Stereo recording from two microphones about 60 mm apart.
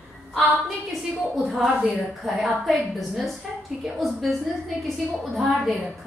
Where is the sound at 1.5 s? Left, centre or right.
Centre.